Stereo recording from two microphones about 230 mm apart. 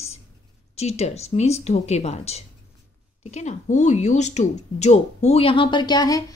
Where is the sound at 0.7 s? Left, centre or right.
Left.